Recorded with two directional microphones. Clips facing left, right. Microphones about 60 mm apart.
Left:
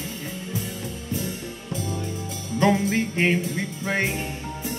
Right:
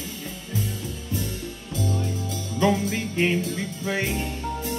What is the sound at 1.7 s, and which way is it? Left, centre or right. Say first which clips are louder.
Music: right 2 dB; left.